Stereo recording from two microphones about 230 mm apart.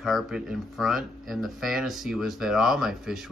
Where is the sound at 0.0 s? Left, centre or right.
Centre.